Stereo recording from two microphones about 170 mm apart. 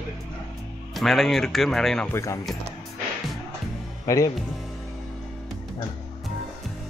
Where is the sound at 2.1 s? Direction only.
15° left (ahead or behind).